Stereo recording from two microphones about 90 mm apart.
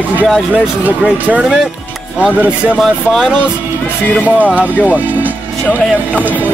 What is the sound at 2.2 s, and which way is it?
Speech, 15° right (ahead or behind).